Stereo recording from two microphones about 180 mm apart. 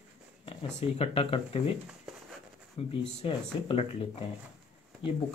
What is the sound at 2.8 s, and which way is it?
Speech, 30° left (ahead or behind).